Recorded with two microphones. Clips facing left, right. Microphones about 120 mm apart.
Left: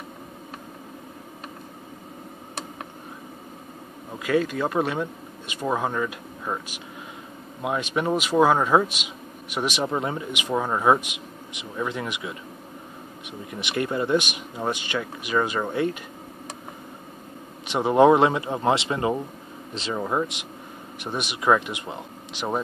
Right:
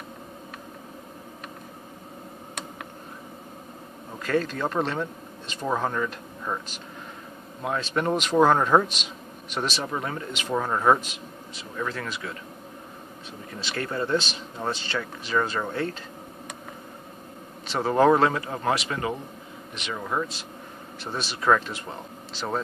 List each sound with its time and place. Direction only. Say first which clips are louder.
4.2 s speech: left 3 dB; 10° left (ahead or behind)
7.6 s speech: left 1 dB; 10° left (ahead or behind)
13.5 s speech: left 4 dB; 20° left (ahead or behind)
17.6 s a man's voice: left 3 dB; 15° left (ahead or behind)